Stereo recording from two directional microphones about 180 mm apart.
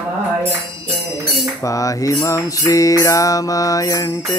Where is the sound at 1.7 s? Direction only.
20° left (ahead or behind).